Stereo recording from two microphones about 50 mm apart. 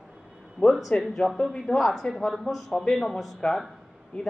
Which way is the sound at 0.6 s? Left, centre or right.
Left.